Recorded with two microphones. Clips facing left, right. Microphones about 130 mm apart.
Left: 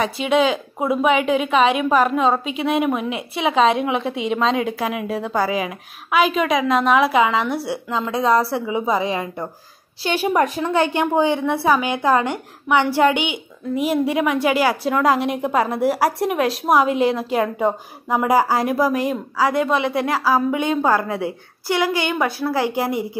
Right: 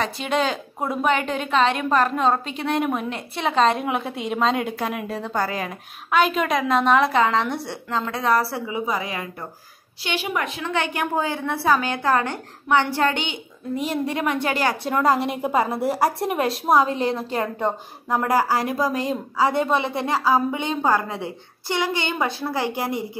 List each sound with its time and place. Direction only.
0.0 s a woman's voice: 5° left (ahead or behind); by 9.5 s 25° left (ahead or behind)
10.0 s a woman's voice: 40° left (ahead or behind); by 18.8 s 20° left (ahead or behind)
19.0 s a woman's voice: 25° right (ahead or behind)
20.0 s a woman's voice: 25° right (ahead or behind)
22.5 s a woman's voice: 15° left (ahead or behind)